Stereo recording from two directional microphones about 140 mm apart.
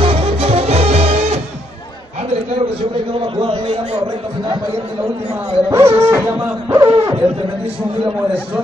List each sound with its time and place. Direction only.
0.0 s music: 45° right (ahead or behind)
3.4 s a man's voice: 40° right (ahead or behind)
5.7 s a man's voice: 20° right (ahead or behind)